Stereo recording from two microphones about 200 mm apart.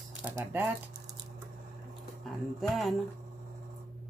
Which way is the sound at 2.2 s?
Centre (ahead or behind).